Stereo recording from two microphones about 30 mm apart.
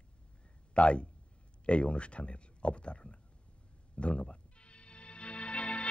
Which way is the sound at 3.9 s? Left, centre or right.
Left.